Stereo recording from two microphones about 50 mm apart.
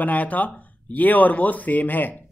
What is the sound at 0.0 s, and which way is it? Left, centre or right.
A man's voice, left.